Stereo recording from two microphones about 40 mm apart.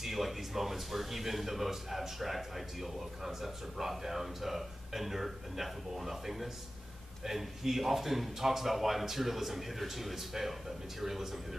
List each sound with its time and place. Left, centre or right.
0.0 s speech: centre